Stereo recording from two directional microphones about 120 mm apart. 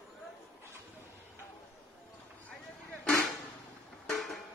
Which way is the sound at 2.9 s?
5° left (ahead or behind).